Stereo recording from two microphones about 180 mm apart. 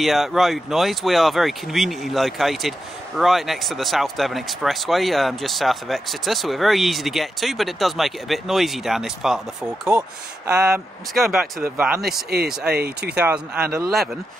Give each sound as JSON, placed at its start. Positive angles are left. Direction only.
{"t": 0.0, "sound": "speech", "side_deg": 0}
{"t": 9.8, "sound": "speech", "side_deg": -15}
{"t": 10.7, "sound": "speech", "side_deg": 0}
{"t": 12.6, "sound": "speech", "side_deg": -60}
{"t": 13.1, "sound": "speech", "side_deg": -5}